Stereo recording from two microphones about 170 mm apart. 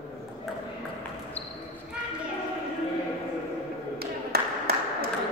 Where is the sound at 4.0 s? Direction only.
65° right (ahead or behind).